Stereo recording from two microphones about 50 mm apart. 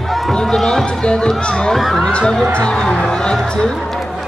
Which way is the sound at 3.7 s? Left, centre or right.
Centre.